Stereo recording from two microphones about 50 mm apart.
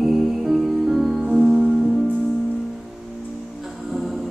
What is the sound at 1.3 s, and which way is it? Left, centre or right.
Music, centre.